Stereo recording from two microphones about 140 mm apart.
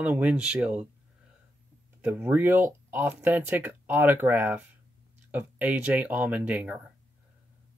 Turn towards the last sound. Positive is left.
turn(degrees=-10)  # may be behind; listen again after turning